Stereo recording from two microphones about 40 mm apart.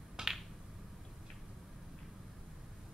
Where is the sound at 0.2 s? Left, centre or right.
Centre.